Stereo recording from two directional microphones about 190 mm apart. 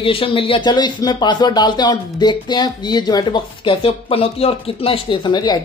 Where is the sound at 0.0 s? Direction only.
30° left (ahead or behind).